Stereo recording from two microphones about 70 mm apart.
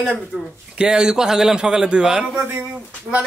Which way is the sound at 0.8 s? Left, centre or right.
Centre.